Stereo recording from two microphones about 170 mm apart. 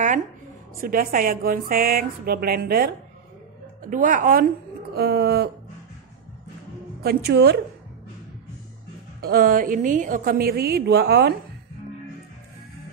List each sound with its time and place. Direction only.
0.7 s a woman's voice: 55° right (ahead or behind)
3.8 s a woman's voice: 50° right (ahead or behind)
4.9 s a woman's voice: 70° right (ahead or behind)
7.0 s a woman's voice: 70° right (ahead or behind)
9.2 s a woman's voice: 60° right (ahead or behind)